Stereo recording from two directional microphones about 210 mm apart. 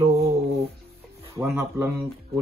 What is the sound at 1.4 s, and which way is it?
Speech, 10° right (ahead or behind).